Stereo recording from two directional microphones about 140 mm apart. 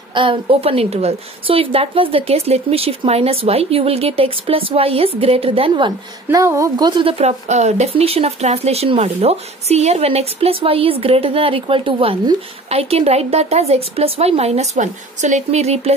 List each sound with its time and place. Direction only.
0.1 s speech: 35° right (ahead or behind)
6.4 s speech: 20° right (ahead or behind); by 15.9 s 50° right (ahead or behind)